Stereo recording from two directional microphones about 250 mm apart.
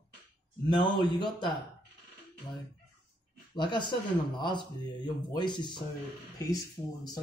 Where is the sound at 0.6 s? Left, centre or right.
Centre.